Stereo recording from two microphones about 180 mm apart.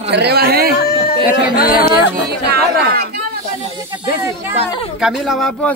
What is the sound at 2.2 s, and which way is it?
Speech, 60° right (ahead or behind).